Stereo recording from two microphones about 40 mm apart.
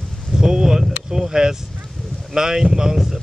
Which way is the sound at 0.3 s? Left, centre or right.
Centre.